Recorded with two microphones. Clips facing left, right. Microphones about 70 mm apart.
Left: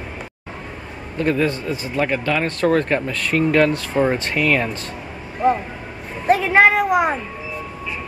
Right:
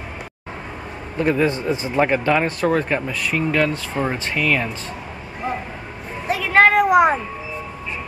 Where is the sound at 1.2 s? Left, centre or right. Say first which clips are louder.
Right 1 dB; centre.